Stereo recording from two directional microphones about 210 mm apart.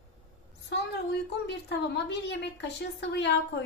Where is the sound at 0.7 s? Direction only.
55° left (ahead or behind).